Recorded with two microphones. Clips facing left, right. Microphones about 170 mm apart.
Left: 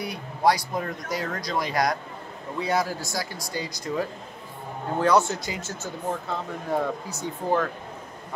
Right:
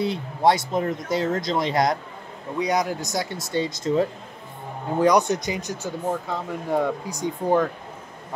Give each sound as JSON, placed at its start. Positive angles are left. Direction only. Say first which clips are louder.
{"t": 0.0, "sound": "speech", "louder": "right 3 dB", "side_deg": -25}